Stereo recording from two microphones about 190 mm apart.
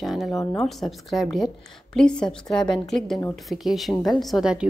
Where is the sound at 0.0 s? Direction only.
Centre (ahead or behind).